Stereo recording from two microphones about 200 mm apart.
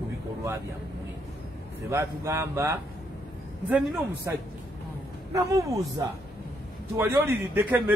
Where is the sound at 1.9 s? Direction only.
15° right (ahead or behind).